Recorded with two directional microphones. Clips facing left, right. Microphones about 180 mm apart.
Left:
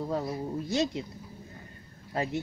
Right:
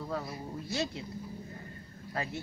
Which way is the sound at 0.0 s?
25° left (ahead or behind).